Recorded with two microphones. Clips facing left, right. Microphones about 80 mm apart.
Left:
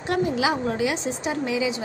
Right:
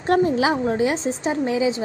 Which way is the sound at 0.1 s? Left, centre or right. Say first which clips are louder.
Right 5 dB; right.